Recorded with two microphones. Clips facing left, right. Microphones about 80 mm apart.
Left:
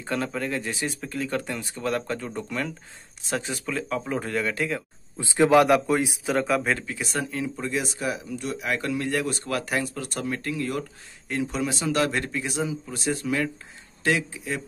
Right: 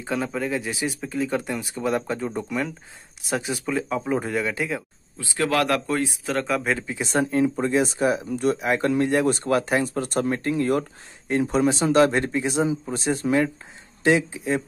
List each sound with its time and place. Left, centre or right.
0.0 s speech: centre
5.1 s a man's voice: left; by 6.8 s centre
6.9 s speech: right
8.5 s speech: right